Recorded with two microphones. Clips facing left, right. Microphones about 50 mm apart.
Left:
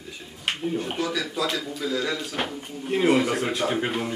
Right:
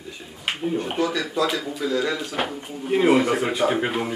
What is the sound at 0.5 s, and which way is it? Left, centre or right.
A man's voice, centre.